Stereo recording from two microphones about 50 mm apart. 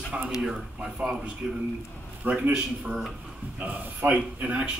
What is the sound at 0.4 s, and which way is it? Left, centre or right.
Speech, centre.